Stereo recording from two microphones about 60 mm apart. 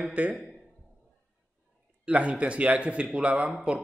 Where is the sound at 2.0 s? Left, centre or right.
Right.